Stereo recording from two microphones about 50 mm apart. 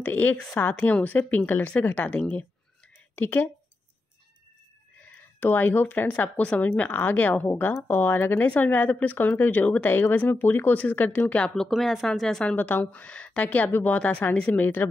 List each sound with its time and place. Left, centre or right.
0.0 s speech: left
0.7 s a woman's voice: left
1.0 s speech: left
3.2 s speech: left
5.0 s speech: left
6.2 s speech: left
7.7 s speech: left
11.7 s a woman's voice: centre
12.5 s a woman's voice: left
13.7 s speech: left
13.9 s a woman's voice: left
14.5 s speech: left